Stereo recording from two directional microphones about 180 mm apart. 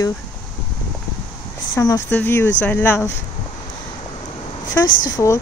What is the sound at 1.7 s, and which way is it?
Speech, 20° left (ahead or behind).